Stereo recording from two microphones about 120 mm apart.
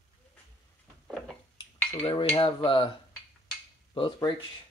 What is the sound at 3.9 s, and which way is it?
Speech, 45° left (ahead or behind).